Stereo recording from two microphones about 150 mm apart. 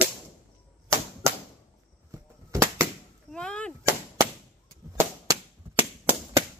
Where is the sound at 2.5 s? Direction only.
20° right (ahead or behind).